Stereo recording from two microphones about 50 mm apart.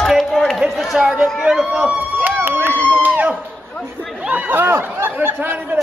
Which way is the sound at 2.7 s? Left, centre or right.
Left.